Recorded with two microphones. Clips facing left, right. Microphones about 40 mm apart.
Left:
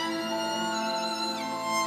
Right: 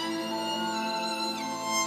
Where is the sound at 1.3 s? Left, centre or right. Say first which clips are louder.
Left 1 dB; left.